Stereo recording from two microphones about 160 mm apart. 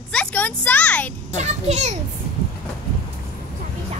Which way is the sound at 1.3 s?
45° right (ahead or behind).